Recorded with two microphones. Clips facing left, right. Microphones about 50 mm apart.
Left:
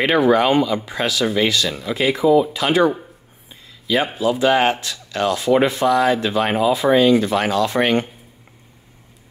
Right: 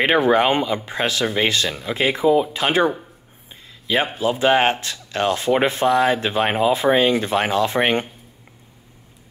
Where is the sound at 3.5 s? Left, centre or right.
Right.